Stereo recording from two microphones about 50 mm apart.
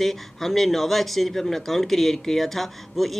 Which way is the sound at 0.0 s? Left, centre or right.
Centre.